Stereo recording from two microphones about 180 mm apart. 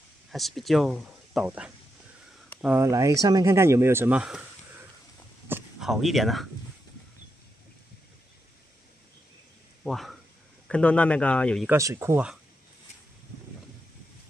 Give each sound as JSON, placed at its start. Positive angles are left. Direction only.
{"t": 0.3, "sound": "speech", "side_deg": 0}
{"t": 5.5, "sound": "speech", "side_deg": 0}
{"t": 9.8, "sound": "speech", "side_deg": 0}
{"t": 11.7, "sound": "speech", "side_deg": -15}